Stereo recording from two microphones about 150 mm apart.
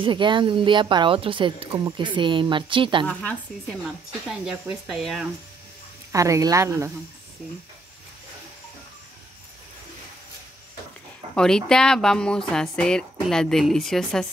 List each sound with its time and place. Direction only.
0.0 s speech: 30° right (ahead or behind)
3.1 s a woman's voice: 10° left (ahead or behind)
4.3 s speech: 5° right (ahead or behind)
6.1 s speech: 20° right (ahead or behind)
11.3 s speech: 5° left (ahead or behind)